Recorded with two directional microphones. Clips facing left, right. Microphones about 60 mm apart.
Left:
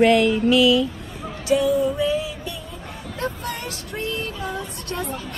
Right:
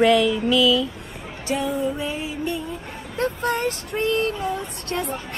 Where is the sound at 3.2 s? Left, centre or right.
Right.